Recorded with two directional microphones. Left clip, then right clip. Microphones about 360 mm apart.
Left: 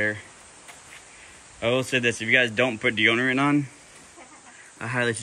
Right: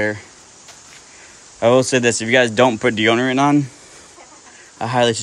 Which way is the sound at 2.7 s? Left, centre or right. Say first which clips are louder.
Right 6 dB; right.